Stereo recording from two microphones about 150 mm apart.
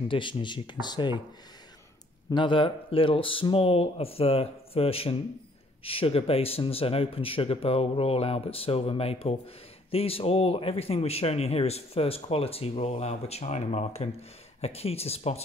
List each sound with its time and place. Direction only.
0.1 s speech: 35° left (ahead or behind)
2.3 s speech: 35° left (ahead or behind)